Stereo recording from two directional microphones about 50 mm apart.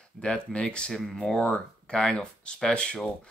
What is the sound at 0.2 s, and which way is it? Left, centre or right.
Speech, left.